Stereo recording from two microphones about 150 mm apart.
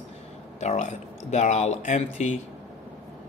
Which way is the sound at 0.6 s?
50° left (ahead or behind).